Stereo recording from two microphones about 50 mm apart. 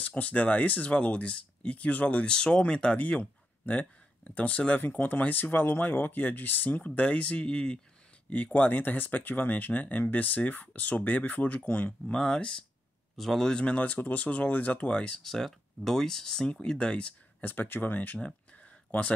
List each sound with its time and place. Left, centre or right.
0.0 s speech: left
3.0 s speech: left
8.3 s speech: left
12.2 s speech: centre
13.1 s a man's voice: centre
13.5 s speech: centre
15.2 s speech: centre; by 17.1 s left
17.4 s speech: left